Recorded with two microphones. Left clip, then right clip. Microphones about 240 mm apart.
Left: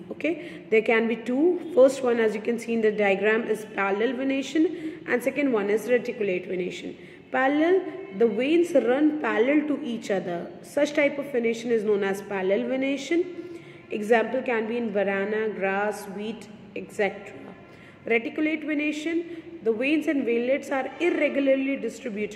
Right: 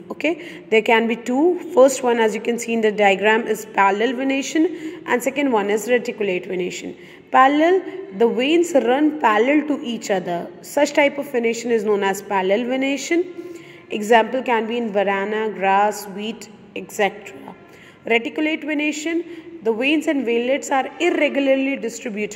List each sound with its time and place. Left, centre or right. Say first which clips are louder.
0.2 s a woman's voice: right 6 dB; centre